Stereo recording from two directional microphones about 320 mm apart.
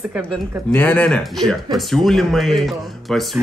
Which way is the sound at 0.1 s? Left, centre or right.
Centre.